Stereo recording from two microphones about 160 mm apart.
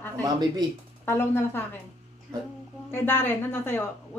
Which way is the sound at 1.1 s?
15° left (ahead or behind).